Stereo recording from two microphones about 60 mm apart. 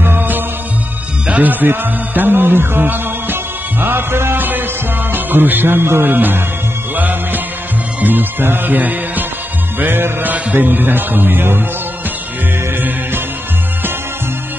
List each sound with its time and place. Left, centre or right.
0.0 s music: right
1.4 s mantra: right
3.8 s music: right
5.1 s mantra: right
6.1 s mantra: right
7.0 s music: right
9.8 s mantra: right
12.7 s music: right